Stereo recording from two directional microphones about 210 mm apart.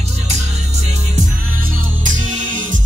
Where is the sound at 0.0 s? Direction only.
30° right (ahead or behind).